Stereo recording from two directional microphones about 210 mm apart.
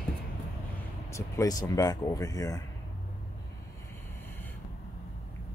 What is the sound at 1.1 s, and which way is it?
Speech, 15° left (ahead or behind).